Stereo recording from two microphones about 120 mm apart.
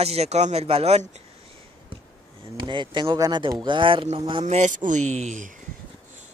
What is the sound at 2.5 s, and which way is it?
Speech, 40° right (ahead or behind).